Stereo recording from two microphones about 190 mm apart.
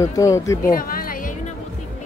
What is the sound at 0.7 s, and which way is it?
Music, 50° left (ahead or behind).